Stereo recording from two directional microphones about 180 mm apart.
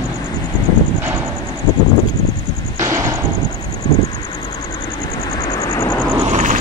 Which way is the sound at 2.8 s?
15° right (ahead or behind).